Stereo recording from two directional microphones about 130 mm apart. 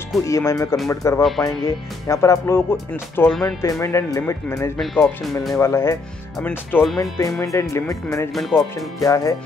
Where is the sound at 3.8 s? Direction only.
20° left (ahead or behind).